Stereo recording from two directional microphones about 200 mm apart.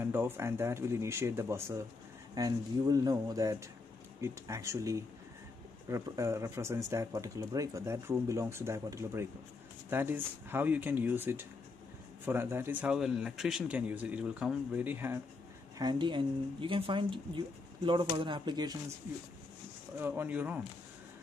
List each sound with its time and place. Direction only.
0.0 s speech: 10° right (ahead or behind)
15.8 s speech: 20° right (ahead or behind)
20.0 s speech: 10° right (ahead or behind)